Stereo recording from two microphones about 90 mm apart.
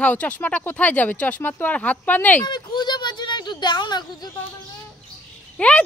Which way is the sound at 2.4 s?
55° left (ahead or behind).